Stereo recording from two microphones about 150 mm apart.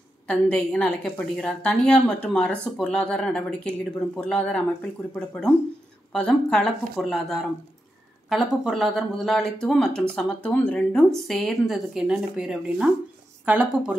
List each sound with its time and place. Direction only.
0.3 s speech: 5° left (ahead or behind)